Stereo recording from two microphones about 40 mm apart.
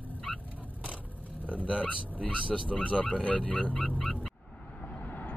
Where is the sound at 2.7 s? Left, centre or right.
Left.